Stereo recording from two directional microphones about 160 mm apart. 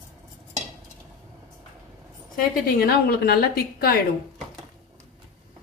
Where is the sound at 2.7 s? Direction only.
75° left (ahead or behind).